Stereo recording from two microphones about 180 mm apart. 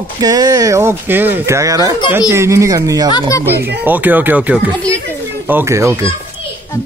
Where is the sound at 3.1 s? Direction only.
20° left (ahead or behind).